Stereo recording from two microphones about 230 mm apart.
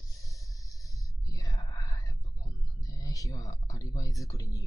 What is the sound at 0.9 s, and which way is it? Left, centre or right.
Whispering, centre.